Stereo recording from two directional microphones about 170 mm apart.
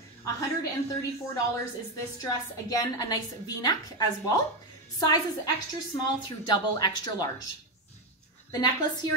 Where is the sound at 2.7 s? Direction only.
20° left (ahead or behind).